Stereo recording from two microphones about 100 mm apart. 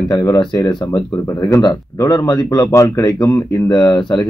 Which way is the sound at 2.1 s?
45° left (ahead or behind).